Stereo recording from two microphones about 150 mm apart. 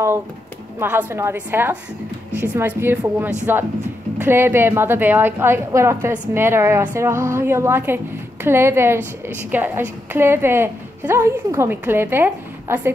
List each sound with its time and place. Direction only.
0.7 s a woman's voice: 15° right (ahead or behind)